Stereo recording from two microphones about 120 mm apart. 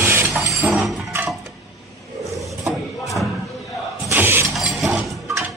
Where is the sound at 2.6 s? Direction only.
Centre (ahead or behind).